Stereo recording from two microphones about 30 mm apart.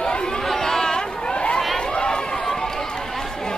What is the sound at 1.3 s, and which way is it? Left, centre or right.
Chatter, left.